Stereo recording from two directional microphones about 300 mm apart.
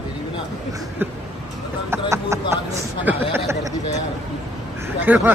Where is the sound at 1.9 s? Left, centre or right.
Centre.